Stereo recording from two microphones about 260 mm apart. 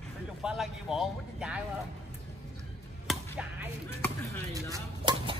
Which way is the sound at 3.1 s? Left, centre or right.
Centre.